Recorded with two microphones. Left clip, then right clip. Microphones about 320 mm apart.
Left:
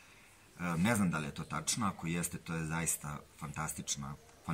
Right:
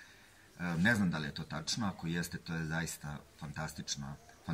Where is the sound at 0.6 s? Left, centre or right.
Centre.